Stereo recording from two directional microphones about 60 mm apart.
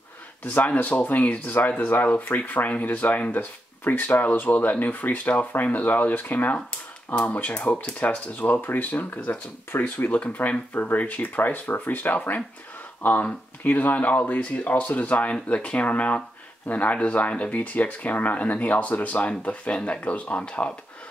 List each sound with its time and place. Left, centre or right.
0.4 s speech: left
12.2 s speech: centre
13.0 s speech: left